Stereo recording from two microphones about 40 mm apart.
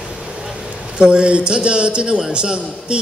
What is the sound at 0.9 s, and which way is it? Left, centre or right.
A man's voice, right.